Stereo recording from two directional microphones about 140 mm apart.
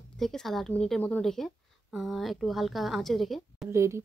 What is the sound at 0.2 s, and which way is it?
A woman's voice, centre (ahead or behind).